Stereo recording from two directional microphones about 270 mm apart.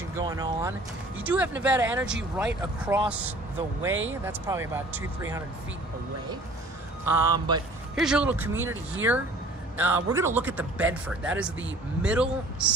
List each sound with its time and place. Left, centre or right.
0.2 s speech: centre
3.9 s speech: right
4.2 s speech: centre
7.1 s speech: centre
7.9 s speech: centre
9.8 s speech: centre